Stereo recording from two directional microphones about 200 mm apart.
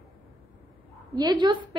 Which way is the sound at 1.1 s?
20° right (ahead or behind).